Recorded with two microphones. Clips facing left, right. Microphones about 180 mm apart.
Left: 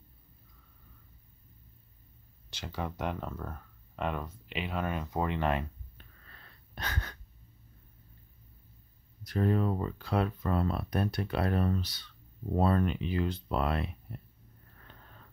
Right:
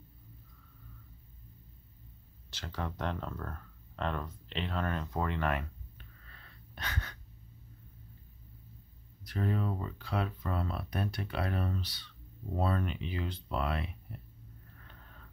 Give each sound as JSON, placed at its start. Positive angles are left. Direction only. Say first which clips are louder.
{"t": 2.5, "sound": "speech", "louder": "left 2 dB", "side_deg": 15}
{"t": 6.7, "sound": "gasp", "louder": "left 2 dB", "side_deg": 40}
{"t": 9.2, "sound": "speech", "louder": "left 5 dB", "side_deg": 45}